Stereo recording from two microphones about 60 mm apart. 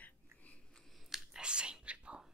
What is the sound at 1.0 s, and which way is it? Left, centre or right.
Chewing, centre.